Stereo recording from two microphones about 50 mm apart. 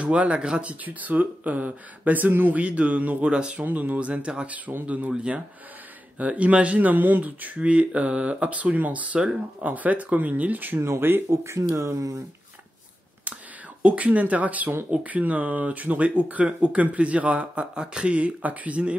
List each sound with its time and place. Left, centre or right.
0.0 s speech: right
2.6 s speech: right
3.3 s speech: centre
3.6 s speech: right
10.8 s speech: right
11.2 s speech: right
13.8 s speech: right
17.7 s speech: centre